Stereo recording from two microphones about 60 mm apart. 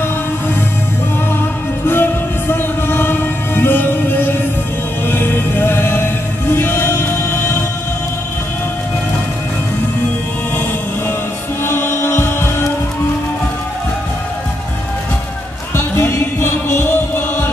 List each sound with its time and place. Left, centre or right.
1.9 s music: left
11.6 s chant: left
15.7 s music: left